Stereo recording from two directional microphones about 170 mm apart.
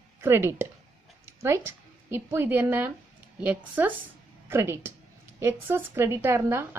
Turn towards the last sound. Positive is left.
turn(degrees=-15)  # may be behind; listen again after turning